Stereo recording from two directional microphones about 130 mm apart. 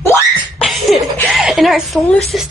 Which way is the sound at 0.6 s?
Centre (ahead or behind).